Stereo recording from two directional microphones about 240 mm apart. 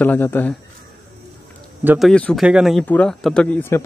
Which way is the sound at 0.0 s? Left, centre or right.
Centre.